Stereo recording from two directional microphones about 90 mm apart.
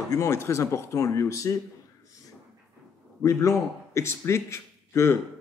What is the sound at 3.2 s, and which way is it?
A man's voice, 35° left (ahead or behind).